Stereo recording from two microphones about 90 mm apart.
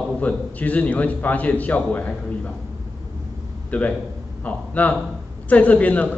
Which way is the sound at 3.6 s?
15° left (ahead or behind).